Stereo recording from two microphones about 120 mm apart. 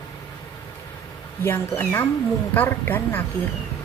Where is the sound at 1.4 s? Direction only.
20° left (ahead or behind).